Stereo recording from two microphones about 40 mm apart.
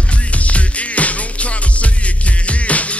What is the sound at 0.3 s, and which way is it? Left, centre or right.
Music, left.